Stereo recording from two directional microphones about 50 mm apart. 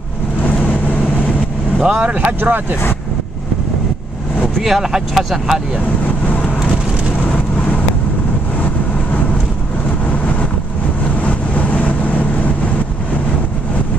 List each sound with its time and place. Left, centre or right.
1.8 s speech: right
4.6 s speech: centre
11.1 s vehicle: left